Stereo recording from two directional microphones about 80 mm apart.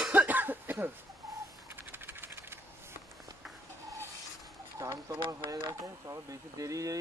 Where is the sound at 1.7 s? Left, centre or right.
Right.